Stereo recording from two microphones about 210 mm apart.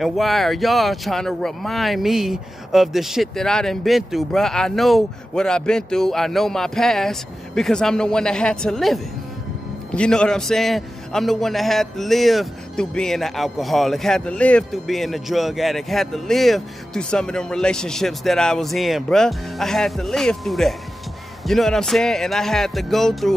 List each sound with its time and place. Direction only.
0.0 s a man's voice: centre (ahead or behind)